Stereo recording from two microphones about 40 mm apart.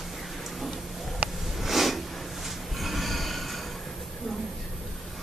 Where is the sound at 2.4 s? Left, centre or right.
Centre.